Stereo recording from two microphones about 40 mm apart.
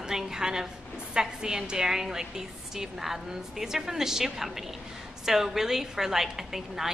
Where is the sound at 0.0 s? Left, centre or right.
Centre.